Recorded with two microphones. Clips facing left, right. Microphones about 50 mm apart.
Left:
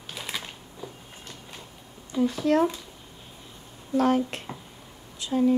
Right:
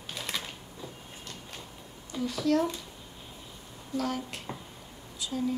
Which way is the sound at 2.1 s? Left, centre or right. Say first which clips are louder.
Left 5 dB; left.